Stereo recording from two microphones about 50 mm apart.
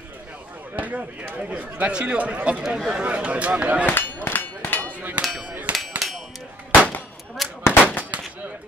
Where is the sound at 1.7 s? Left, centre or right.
Centre.